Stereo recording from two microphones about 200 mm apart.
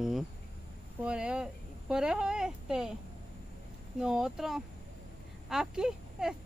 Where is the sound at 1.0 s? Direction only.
5° right (ahead or behind).